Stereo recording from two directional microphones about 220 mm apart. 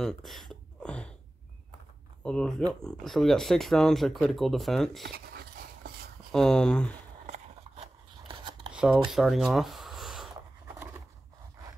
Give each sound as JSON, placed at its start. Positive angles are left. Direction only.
{"t": 0.0, "sound": "a sound", "side_deg": 0}
{"t": 2.2, "sound": "speech", "side_deg": 5}
{"t": 5.0, "sound": "a sound", "side_deg": -45}
{"t": 6.3, "sound": "speech", "side_deg": 5}
{"t": 7.2, "sound": "scissors", "side_deg": -30}
{"t": 8.7, "sound": "shuffling cards", "side_deg": -5}
{"t": 9.1, "sound": "speech", "side_deg": 0}